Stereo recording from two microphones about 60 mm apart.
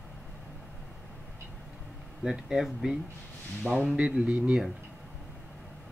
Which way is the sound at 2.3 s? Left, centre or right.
Centre.